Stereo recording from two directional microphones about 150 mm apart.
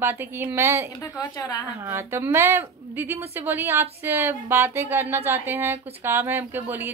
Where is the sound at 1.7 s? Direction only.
15° right (ahead or behind).